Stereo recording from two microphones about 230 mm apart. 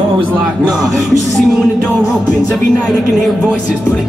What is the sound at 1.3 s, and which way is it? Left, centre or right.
Music, centre.